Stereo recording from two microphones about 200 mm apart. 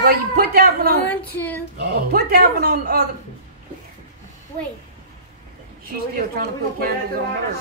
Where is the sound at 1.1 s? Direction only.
10° left (ahead or behind).